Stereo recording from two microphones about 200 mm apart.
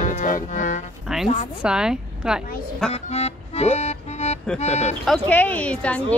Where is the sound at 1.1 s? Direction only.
Centre (ahead or behind).